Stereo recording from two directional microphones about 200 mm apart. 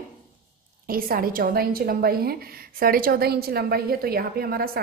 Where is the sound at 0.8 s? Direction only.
45° right (ahead or behind).